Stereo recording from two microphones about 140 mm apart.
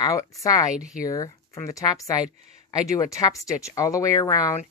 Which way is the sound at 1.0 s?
25° left (ahead or behind).